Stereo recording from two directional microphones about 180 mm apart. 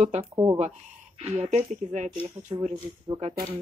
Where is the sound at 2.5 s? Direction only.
30° right (ahead or behind).